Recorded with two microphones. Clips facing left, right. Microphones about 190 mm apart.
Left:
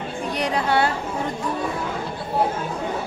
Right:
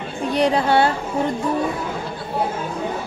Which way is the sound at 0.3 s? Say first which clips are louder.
Right 5 dB; 30° right (ahead or behind).